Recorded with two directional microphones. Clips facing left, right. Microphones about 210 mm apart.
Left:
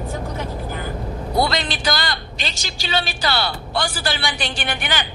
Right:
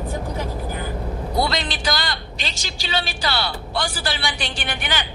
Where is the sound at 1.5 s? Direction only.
50° left (ahead or behind).